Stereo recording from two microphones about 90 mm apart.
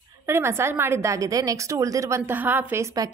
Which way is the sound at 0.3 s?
30° right (ahead or behind).